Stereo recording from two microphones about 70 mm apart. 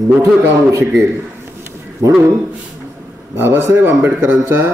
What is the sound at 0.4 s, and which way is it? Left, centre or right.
Speech, right.